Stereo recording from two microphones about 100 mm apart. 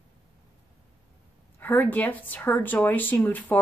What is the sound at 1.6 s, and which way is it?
A woman's voice, 15° left (ahead or behind).